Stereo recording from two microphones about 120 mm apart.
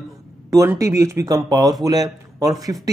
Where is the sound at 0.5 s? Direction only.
25° right (ahead or behind).